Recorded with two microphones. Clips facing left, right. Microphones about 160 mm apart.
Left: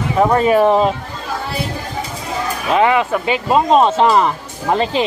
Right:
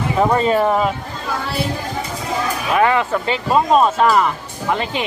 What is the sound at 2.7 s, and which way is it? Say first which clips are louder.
Speech: left 2 dB; 20° left (ahead or behind).